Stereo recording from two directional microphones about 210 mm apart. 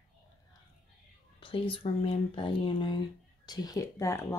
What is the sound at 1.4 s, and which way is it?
Speech, 25° left (ahead or behind).